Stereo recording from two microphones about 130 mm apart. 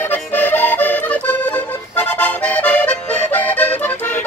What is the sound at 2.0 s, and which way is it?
Accordion, 10° left (ahead or behind).